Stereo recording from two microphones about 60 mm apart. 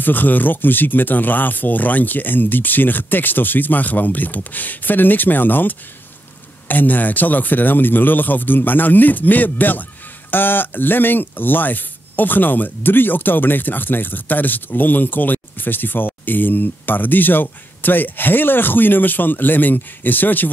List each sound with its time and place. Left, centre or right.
0.0 s speech: left